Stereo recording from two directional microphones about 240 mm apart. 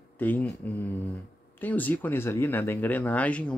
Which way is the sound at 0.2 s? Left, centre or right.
Centre.